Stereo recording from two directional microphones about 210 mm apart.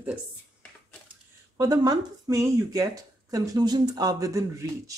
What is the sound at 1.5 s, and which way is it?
Speech, 20° right (ahead or behind).